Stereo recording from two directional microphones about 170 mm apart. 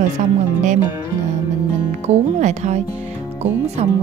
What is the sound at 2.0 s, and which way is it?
Speech, 40° right (ahead or behind).